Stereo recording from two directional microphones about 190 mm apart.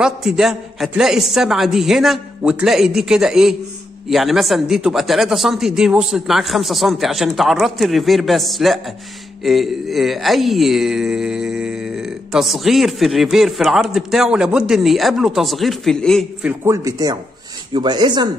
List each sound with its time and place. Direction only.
0.0 s speech: centre (ahead or behind)
16.6 s speech: 15° right (ahead or behind)